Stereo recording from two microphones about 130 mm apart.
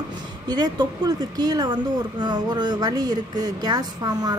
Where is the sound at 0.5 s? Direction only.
30° right (ahead or behind).